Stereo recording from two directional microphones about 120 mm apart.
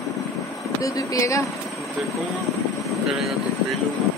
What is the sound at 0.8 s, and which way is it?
Speech, 25° left (ahead or behind).